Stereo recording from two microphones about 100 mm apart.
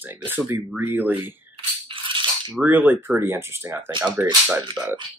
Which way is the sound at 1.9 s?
55° right (ahead or behind).